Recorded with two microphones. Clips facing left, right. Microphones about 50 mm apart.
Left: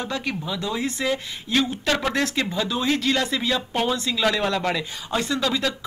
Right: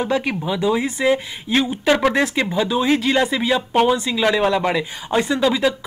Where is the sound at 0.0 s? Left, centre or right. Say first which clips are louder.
Right 7 dB; centre.